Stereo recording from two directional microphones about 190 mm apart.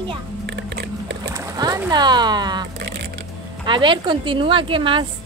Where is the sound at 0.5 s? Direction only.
65° right (ahead or behind).